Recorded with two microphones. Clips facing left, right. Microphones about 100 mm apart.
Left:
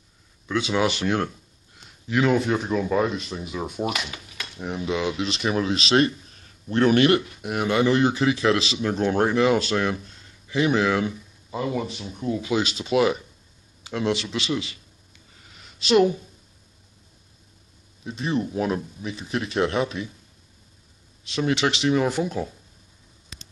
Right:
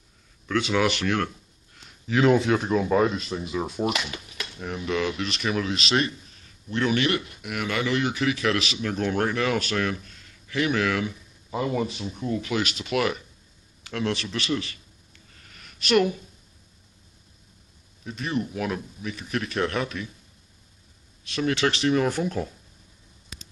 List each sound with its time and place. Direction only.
0.5 s speech: 20° left (ahead or behind)
2.0 s speech: centre (ahead or behind)
4.6 s speech: 15° left (ahead or behind)
5.2 s speech: 30° left (ahead or behind)
11.5 s speech: centre (ahead or behind)
12.4 s speech: 20° left (ahead or behind)
15.3 s a sound: 15° left (ahead or behind)
15.6 s a sound: 25° left (ahead or behind)
18.0 s speech: 30° left (ahead or behind)
21.2 s speech: 20° left (ahead or behind)